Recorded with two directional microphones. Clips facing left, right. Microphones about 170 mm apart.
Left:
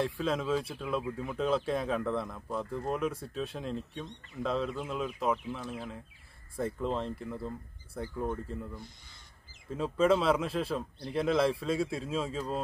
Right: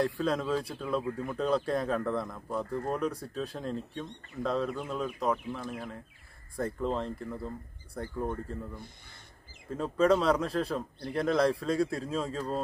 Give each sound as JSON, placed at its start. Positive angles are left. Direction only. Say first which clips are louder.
{"t": 0.0, "sound": "speech", "louder": "right 2 dB", "side_deg": 0}
{"t": 9.7, "sound": "speech", "louder": "right 1 dB", "side_deg": 5}